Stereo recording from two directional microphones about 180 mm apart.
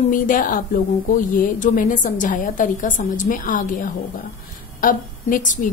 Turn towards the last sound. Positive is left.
turn(degrees=45)  # may be behind; listen again after turning